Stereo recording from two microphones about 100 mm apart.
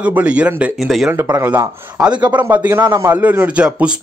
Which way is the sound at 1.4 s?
25° right (ahead or behind).